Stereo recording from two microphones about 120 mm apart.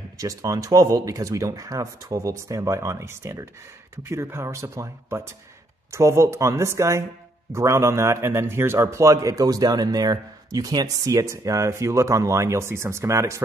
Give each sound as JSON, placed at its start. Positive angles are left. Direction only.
{"t": 0.2, "sound": "a man's voice", "side_deg": -30}